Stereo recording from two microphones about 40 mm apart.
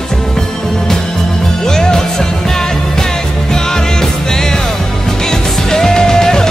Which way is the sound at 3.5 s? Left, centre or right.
Centre.